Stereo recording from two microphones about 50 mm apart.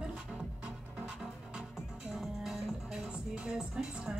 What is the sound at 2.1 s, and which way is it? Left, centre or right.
Music, centre.